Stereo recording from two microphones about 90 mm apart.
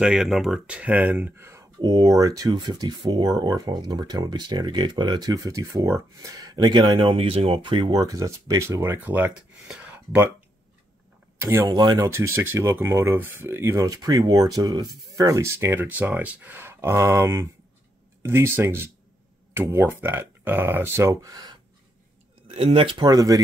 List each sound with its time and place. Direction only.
0.0 s speech: 5° right (ahead or behind); by 1.6 s 30° right (ahead or behind)
1.8 s speech: 45° right (ahead or behind)
2.5 s speech: 55° right (ahead or behind)
7.0 s speech: 85° right; by 10.3 s 15° right (ahead or behind)
11.6 s speech: 50° right (ahead or behind)
12.1 s speech: 30° right (ahead or behind)
15.7 s speech: 20° right (ahead or behind); by 21.5 s 45° right (ahead or behind)
22.6 s speech: 90° right
22.9 s speech: 45° right (ahead or behind)